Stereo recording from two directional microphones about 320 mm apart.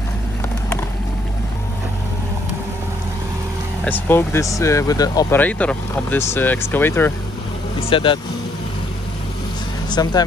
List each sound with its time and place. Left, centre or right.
3.8 s speech: centre
9.8 s speech: centre